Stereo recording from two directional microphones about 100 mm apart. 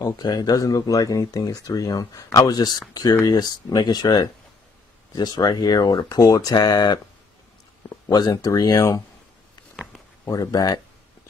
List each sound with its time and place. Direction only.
0.0 s speech: 40° left (ahead or behind)
9.8 s a sound: 10° right (ahead or behind)
10.2 s speech: 40° left (ahead or behind)